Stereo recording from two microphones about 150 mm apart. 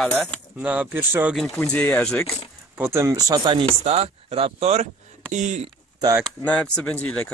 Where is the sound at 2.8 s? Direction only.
15° right (ahead or behind).